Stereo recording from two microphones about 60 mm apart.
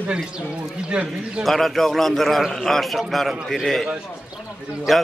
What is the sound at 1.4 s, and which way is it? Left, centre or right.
A man's voice, centre.